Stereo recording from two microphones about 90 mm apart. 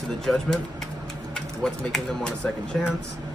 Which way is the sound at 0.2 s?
5° left (ahead or behind).